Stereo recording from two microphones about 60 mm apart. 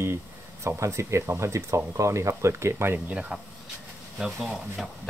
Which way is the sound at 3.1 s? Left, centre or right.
Right.